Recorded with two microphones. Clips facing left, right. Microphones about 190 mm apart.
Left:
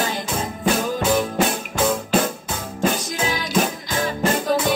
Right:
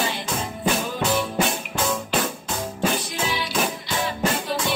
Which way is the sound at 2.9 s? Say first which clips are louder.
Left 2 dB; 45° left (ahead or behind).